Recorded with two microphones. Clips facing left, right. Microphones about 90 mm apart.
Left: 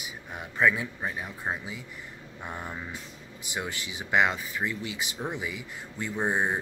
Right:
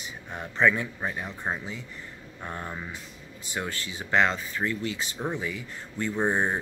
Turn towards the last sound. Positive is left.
turn(degrees=10)  # may be behind; listen again after turning